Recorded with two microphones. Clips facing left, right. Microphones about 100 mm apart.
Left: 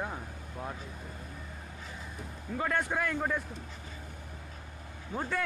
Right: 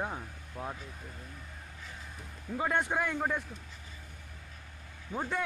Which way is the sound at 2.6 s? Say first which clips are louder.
Right 1 dB; 15° right (ahead or behind).